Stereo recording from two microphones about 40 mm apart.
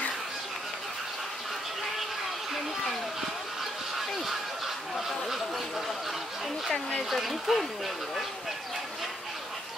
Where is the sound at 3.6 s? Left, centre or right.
Centre.